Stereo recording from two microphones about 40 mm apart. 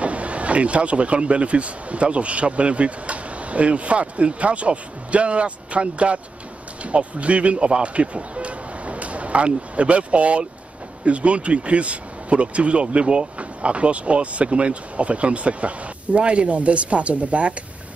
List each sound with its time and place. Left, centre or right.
0.0 s speech: right